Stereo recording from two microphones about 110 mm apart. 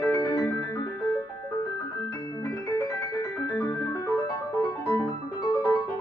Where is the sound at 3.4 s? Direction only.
25° left (ahead or behind).